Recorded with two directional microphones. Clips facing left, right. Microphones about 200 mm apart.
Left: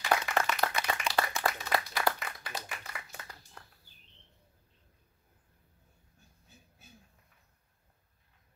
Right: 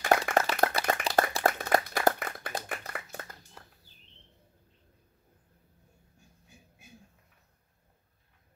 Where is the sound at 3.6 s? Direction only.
5° right (ahead or behind).